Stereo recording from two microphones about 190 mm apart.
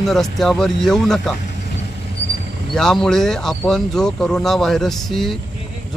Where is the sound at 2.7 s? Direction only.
5° left (ahead or behind).